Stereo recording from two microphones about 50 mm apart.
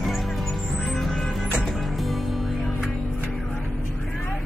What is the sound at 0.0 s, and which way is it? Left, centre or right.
Music, centre.